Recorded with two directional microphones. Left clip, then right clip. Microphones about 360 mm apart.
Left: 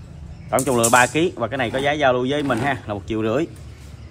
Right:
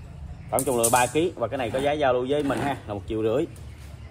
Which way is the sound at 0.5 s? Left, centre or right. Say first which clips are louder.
Left 5 dB; left.